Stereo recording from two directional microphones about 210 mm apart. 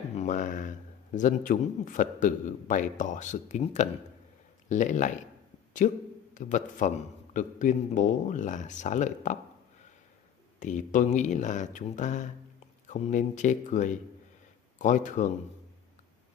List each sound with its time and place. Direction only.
0.1 s a man's voice: 35° left (ahead or behind)
10.6 s a man's voice: 35° left (ahead or behind)